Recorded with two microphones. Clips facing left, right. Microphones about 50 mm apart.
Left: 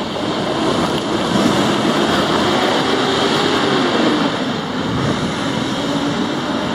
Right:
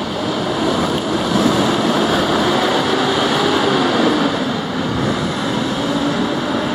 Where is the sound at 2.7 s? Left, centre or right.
Centre.